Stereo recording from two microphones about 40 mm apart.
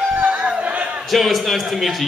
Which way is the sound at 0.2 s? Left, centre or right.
Right.